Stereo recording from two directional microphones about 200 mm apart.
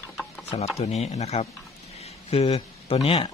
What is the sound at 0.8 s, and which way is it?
Speech, 30° left (ahead or behind).